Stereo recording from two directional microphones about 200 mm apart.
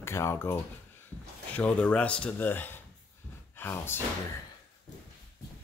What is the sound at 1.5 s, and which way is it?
Speech, 5° left (ahead or behind).